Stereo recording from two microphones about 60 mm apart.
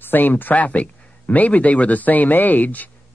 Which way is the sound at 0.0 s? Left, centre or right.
Left.